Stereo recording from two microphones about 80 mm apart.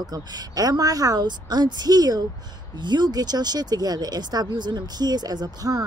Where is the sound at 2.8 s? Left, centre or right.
Right.